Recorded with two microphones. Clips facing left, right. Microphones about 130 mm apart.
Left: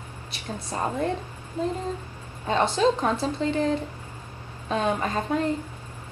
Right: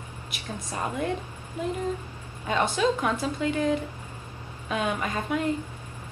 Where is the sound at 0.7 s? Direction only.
30° left (ahead or behind).